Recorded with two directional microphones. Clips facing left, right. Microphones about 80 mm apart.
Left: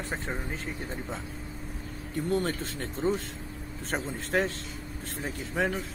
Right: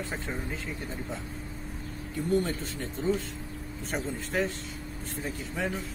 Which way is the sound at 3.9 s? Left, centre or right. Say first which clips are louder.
Left 1 dB; left.